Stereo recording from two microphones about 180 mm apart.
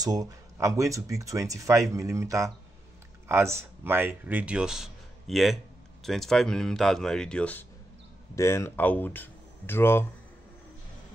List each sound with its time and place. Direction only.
0.0 s speech: 20° right (ahead or behind); by 10.0 s 10° left (ahead or behind)